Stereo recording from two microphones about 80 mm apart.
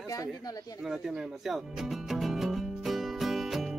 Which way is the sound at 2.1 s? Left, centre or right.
Centre.